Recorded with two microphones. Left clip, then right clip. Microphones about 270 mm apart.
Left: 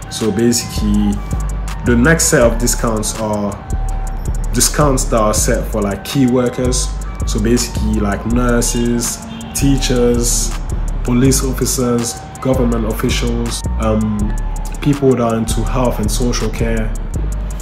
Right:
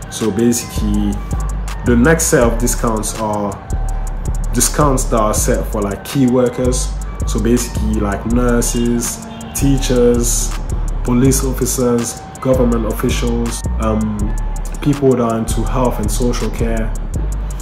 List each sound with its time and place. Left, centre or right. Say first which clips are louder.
0.2 s speech: left 1 dB; centre
4.6 s speech: even; centre
11.1 s speech: even; centre